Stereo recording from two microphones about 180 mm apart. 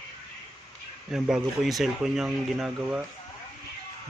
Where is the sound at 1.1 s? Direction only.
5° right (ahead or behind).